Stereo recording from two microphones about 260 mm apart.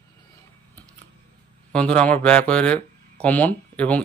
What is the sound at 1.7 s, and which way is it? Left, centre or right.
Speech, centre.